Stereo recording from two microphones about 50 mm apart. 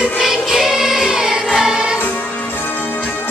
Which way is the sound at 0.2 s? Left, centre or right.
Centre.